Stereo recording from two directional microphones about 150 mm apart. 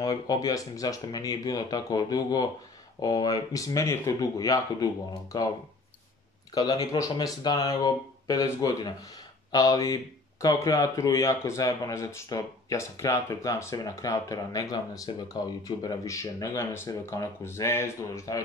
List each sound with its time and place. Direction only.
0.0 s speech: 25° left (ahead or behind)
6.5 s speech: 25° left (ahead or behind)